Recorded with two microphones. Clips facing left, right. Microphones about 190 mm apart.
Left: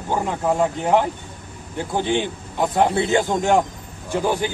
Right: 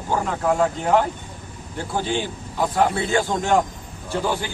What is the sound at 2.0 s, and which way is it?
A man's voice, 20° left (ahead or behind).